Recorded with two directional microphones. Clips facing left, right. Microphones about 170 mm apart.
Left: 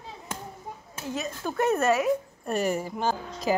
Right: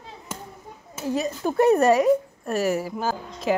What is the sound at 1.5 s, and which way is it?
Speech, 35° right (ahead or behind).